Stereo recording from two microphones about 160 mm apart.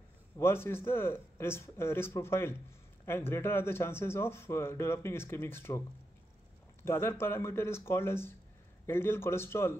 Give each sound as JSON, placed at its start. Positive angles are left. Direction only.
{"t": 0.4, "sound": "speech", "side_deg": 15}